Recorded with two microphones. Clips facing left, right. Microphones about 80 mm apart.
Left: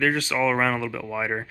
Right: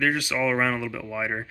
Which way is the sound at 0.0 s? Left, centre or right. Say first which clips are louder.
Left 2 dB; centre.